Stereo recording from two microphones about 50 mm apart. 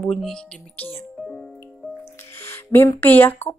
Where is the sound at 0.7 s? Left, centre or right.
Left.